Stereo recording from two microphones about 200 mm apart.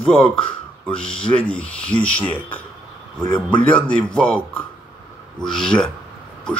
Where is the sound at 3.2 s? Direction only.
25° left (ahead or behind).